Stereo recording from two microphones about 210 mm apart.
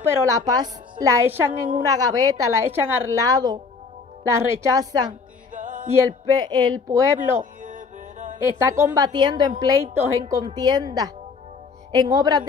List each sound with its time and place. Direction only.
0.0 s a woman's voice: 10° right (ahead or behind)
5.5 s music: 40° right (ahead or behind)
6.0 s a woman's voice: 15° right (ahead or behind)
7.6 s music: 35° right (ahead or behind)
8.4 s a woman's voice: 15° right (ahead or behind)